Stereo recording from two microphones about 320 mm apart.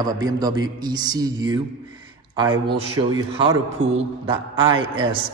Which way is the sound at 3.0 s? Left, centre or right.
Centre.